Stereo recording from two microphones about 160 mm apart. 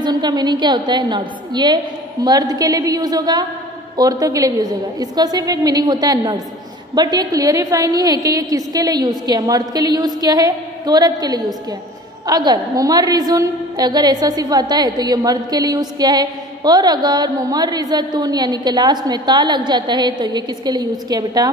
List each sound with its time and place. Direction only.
0.0 s a woman's voice: 25° right (ahead or behind)